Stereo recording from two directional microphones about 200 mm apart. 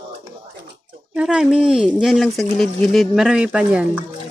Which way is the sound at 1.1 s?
5° right (ahead or behind).